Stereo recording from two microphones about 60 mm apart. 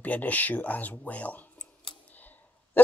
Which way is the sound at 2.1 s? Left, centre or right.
Left.